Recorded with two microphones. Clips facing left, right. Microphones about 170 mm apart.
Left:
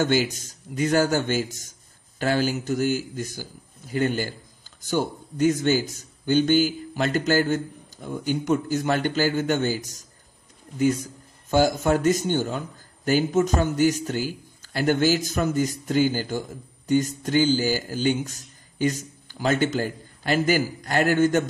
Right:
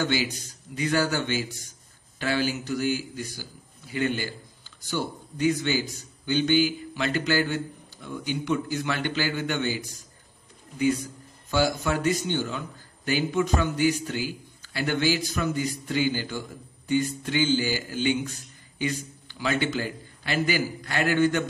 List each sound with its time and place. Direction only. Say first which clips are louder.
0.0 s a man's voice: left 4 dB; 45° left (ahead or behind)